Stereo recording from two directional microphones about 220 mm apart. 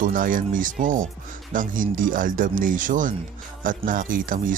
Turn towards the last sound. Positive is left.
turn(degrees=-40)  # may be behind; listen again after turning